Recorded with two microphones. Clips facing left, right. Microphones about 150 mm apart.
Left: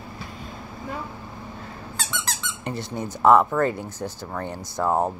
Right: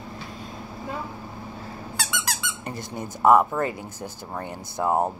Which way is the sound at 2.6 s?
45° right (ahead or behind).